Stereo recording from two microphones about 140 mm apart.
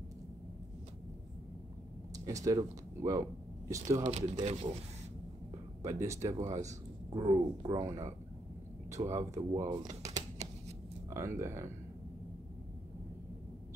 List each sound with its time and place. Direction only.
2.1 s speech: 25° right (ahead or behind)
4.0 s speech: 55° right (ahead or behind)
5.8 s speech: 20° right (ahead or behind)
7.1 s speech: 35° right (ahead or behind)